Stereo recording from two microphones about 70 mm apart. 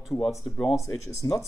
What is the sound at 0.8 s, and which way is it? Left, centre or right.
Speech, left.